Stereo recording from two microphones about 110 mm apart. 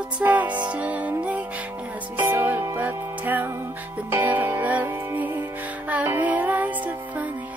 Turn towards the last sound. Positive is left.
turn(degrees=-15)  # may be behind; listen again after turning